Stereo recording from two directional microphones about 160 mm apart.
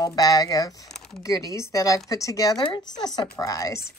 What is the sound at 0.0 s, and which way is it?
A woman's voice, 25° left (ahead or behind).